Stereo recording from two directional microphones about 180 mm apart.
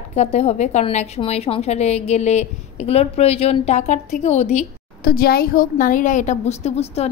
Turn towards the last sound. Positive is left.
turn(degrees=35)  # may be behind; listen again after turning